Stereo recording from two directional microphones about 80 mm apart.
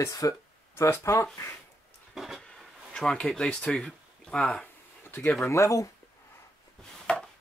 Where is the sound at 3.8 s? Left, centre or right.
Centre.